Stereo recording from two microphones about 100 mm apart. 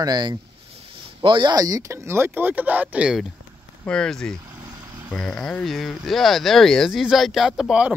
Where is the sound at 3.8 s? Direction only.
5° left (ahead or behind); by 7.9 s 10° right (ahead or behind).